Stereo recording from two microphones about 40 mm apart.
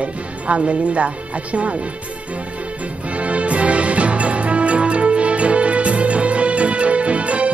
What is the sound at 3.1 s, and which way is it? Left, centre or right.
Music, right.